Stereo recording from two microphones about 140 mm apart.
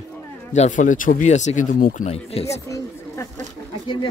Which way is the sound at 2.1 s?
45° left (ahead or behind).